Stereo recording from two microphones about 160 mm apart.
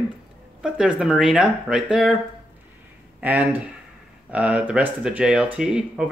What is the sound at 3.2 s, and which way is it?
Speech, 10° right (ahead or behind).